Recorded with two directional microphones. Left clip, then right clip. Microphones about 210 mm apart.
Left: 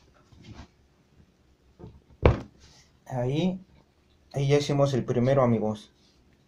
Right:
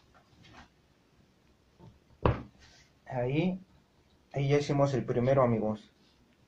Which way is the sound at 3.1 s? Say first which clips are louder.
Left 2 dB; 20° left (ahead or behind).